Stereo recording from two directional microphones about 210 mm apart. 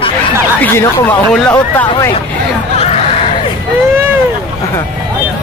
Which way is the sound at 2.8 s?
30° left (ahead or behind).